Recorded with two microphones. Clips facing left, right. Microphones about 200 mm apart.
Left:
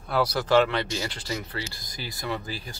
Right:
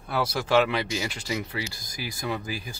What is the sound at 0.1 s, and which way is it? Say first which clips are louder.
Speech: left 2 dB; 10° right (ahead or behind).